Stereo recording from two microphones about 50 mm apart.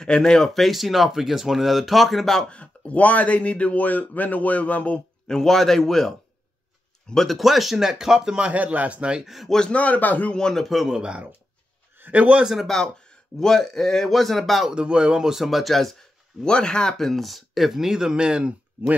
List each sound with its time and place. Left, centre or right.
0.0 s speech: centre
2.5 s speech: left
5.2 s speech: centre
8.5 s speech: right
9.2 s speech: centre
9.7 s speech: left
10.3 s speech: centre
10.6 s speech: centre
10.9 s speech: centre
12.6 s speech: centre
14.7 s speech: centre
16.4 s speech: centre
17.1 s speech: centre